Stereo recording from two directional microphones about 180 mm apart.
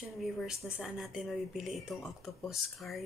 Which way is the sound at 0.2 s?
Centre (ahead or behind).